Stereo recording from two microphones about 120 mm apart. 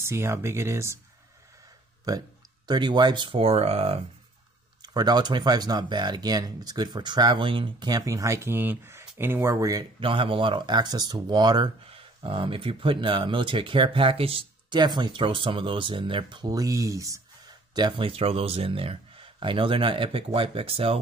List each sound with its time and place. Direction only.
0.0 s speech: 20° right (ahead or behind)
2.1 s speech: 30° right (ahead or behind); by 4.0 s 55° right (ahead or behind)
4.8 s speech: 35° right (ahead or behind)
7.9 s speech: 30° right (ahead or behind)
9.9 s speech: 45° right (ahead or behind); by 17.2 s 25° right (ahead or behind)
17.7 s speech: 40° right (ahead or behind)